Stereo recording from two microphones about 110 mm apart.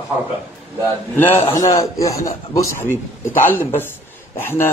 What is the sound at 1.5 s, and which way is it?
A man's voice, 30° left (ahead or behind).